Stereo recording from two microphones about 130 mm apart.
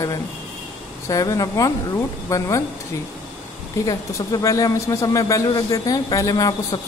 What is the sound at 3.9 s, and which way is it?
A man's voice, 25° left (ahead or behind).